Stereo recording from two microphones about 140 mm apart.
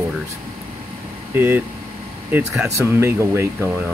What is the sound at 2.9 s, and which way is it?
Speech, 20° right (ahead or behind).